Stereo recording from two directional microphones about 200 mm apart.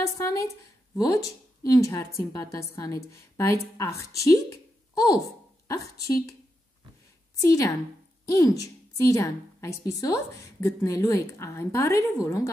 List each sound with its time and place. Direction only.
0.0 s a woman's voice: 15° left (ahead or behind)
7.3 s a woman's voice: 15° left (ahead or behind)